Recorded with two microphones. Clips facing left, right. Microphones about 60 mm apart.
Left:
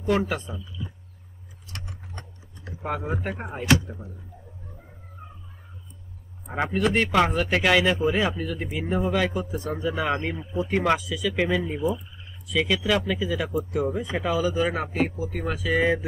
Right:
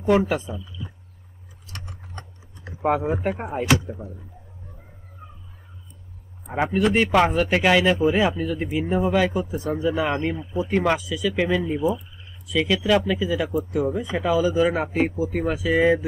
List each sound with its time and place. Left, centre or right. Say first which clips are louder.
0.0 s speech: right 5 dB; centre
2.6 s a sound: right 8 dB; right
3.1 s speech: right 5 dB; centre
6.5 s speech: right 3 dB; centre